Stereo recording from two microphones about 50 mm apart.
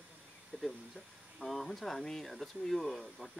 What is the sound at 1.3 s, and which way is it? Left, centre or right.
Speech, centre.